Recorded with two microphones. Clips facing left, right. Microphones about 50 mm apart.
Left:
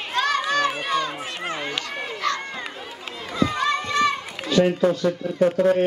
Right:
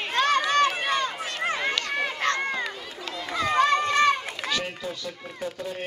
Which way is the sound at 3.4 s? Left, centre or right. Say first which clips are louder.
Right 3 dB; right.